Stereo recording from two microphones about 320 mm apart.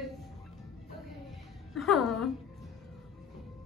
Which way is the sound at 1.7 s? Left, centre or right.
Centre.